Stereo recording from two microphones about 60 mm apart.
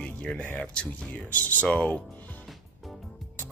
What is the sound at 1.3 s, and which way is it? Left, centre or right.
Speech, left.